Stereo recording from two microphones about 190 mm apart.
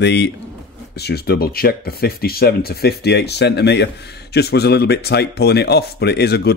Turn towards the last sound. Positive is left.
turn(degrees=60)  # may be behind; listen again after turning